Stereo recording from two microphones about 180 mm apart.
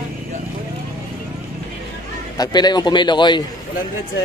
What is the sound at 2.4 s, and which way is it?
A man's voice, 25° left (ahead or behind).